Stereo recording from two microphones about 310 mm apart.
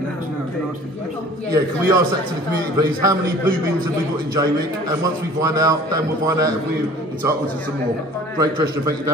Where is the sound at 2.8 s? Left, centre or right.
Centre.